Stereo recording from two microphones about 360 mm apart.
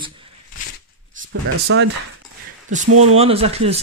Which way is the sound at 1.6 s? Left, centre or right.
Right.